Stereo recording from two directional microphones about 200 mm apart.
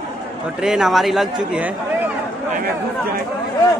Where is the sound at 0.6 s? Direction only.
Centre (ahead or behind).